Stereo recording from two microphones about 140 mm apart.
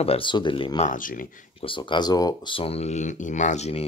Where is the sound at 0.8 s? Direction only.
75° left (ahead or behind).